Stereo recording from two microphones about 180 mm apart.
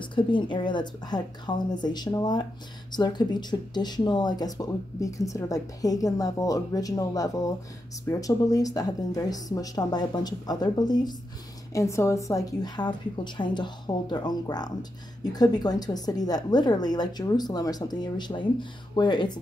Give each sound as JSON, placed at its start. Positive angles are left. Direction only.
{"t": 0.0, "sound": "speech", "side_deg": 25}